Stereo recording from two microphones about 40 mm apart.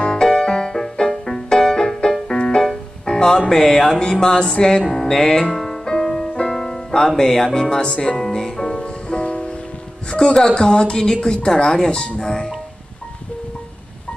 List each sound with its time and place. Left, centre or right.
0.0 s music: centre
3.3 s speech: centre
5.5 s music: centre
7.7 s music: centre
10.2 s speech: centre